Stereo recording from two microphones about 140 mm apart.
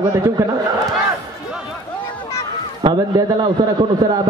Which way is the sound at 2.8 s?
35° right (ahead or behind).